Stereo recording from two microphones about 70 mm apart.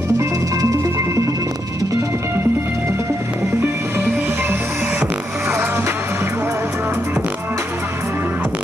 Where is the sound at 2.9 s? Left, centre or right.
Right.